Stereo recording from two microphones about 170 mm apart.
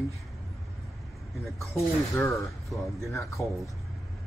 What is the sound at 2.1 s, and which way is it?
Speech, 15° left (ahead or behind).